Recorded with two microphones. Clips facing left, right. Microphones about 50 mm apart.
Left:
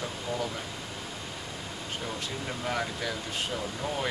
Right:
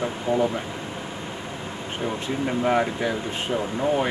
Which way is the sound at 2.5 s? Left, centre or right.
Right.